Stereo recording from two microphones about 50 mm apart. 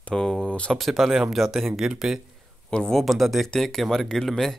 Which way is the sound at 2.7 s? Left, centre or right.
Centre.